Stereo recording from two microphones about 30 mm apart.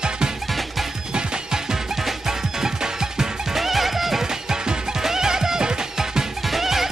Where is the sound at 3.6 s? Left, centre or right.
Centre.